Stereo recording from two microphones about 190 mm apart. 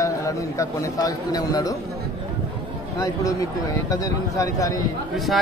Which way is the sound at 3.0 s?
20° left (ahead or behind).